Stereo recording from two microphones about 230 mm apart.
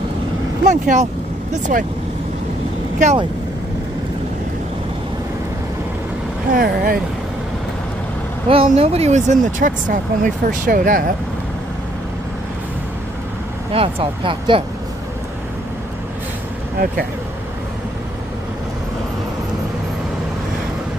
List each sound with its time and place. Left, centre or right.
0.7 s speech: right
3.0 s speech: right
6.5 s speech: right
8.5 s speech: right
13.7 s speech: right